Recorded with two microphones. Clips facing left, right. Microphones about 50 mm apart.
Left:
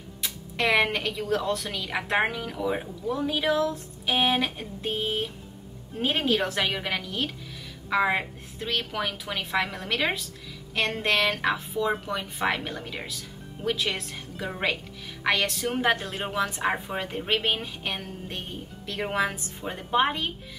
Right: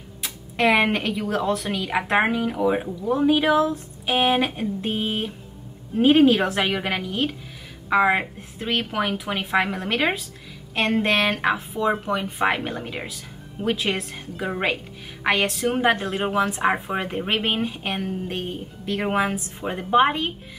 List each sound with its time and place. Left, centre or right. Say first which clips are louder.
1.1 s a woman's voice: right 3 dB; right